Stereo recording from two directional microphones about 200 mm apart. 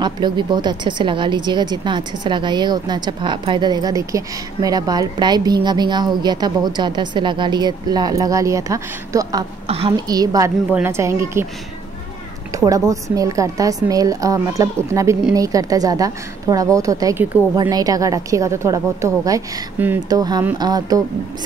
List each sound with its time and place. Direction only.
0.0 s a woman's voice: 20° right (ahead or behind)
12.5 s a woman's voice: 15° right (ahead or behind)